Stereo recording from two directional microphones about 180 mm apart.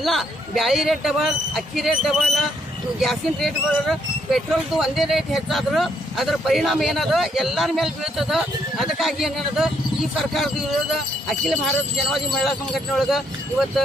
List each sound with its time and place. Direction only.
0.0 s speech: centre (ahead or behind)